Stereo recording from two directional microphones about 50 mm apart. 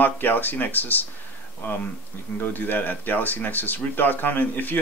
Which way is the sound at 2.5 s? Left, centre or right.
Left.